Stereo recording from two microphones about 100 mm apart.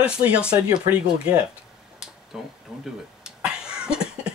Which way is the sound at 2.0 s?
5° right (ahead or behind).